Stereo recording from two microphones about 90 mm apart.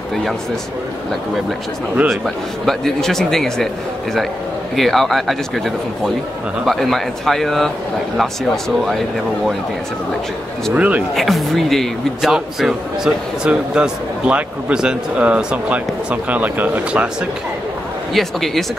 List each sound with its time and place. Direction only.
2.0 s speech: centre (ahead or behind)
4.7 s speech: centre (ahead or behind)
6.6 s speech: centre (ahead or behind)
10.7 s speech: 15° right (ahead or behind)
11.1 s speech: centre (ahead or behind); by 17.1 s 15° right (ahead or behind)
18.1 s speech: centre (ahead or behind)